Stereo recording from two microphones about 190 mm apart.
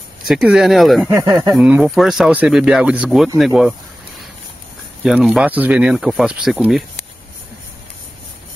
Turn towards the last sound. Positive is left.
turn(degrees=0)  # may be behind; listen again after turning